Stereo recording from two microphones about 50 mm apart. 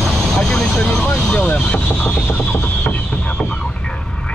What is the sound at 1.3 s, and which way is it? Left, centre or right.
Vehicle, left.